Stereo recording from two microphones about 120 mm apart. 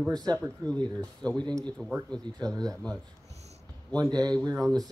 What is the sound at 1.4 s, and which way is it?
Speech, 35° right (ahead or behind).